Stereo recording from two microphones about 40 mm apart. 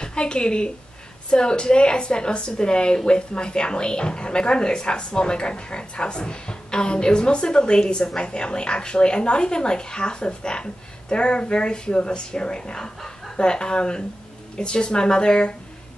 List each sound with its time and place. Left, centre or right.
0.0 s a woman's voice: left